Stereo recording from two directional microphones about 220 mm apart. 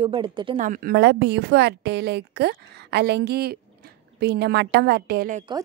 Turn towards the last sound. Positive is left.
turn(degrees=-45)  # may be behind; listen again after turning